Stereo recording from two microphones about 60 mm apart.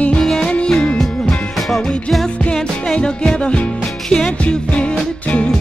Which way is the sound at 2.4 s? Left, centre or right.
Centre.